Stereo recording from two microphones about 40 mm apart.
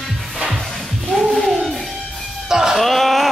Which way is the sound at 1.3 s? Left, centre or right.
Centre.